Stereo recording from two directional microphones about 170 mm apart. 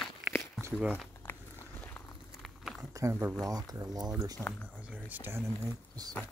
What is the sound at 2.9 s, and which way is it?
Speech, 15° right (ahead or behind).